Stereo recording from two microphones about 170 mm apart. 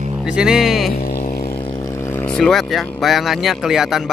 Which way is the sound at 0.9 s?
60° left (ahead or behind).